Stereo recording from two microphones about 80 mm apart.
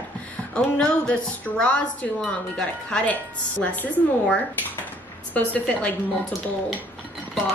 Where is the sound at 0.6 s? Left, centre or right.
Centre.